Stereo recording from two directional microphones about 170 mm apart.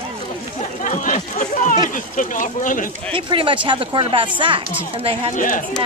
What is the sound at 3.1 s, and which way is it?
Speech, 30° right (ahead or behind).